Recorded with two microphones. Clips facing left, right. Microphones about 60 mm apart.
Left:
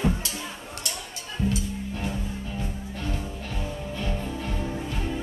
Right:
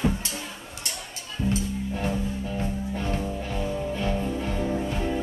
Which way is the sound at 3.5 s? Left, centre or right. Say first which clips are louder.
Right 4 dB; right.